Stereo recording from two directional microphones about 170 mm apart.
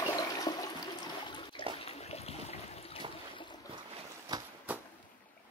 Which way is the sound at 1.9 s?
40° left (ahead or behind).